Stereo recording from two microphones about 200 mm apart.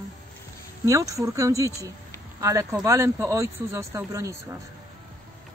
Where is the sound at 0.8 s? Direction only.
15° right (ahead or behind).